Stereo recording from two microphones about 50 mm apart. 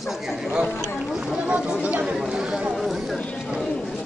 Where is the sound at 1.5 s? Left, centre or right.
Right.